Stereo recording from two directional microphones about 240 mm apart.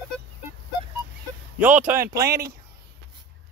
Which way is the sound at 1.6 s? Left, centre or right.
Centre.